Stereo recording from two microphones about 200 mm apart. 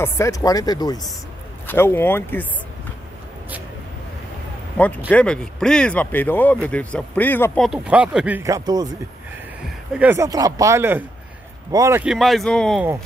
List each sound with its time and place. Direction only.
0.0 s speech: 15° left (ahead or behind)
4.7 s speech: 5° left (ahead or behind); by 8.8 s 20° right (ahead or behind)
9.9 s speech: 10° right (ahead or behind)